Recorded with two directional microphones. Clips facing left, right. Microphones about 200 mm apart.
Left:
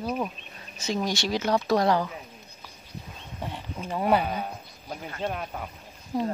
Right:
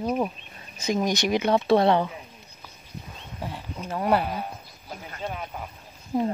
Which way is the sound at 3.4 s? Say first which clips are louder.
Even; 5° right (ahead or behind).